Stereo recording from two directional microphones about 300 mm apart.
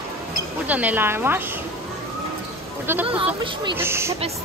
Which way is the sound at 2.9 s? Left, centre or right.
Centre.